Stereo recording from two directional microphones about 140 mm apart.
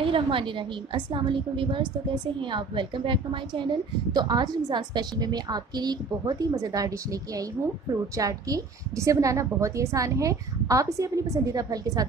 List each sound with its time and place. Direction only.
0.0 s a woman's voice: 40° right (ahead or behind)